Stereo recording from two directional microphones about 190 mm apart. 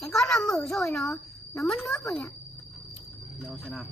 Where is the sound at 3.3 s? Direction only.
5° right (ahead or behind).